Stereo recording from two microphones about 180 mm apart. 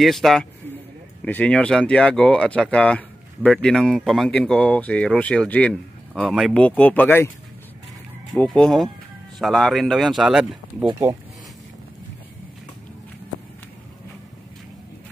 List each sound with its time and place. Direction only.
0.0 s speech: centre (ahead or behind)
8.4 s speech: 5° left (ahead or behind)
10.9 s speech: 20° right (ahead or behind)